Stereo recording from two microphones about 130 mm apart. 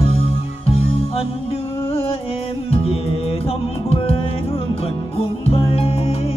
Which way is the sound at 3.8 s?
45° left (ahead or behind).